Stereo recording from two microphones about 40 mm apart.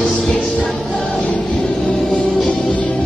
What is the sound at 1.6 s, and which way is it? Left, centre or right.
Music, left.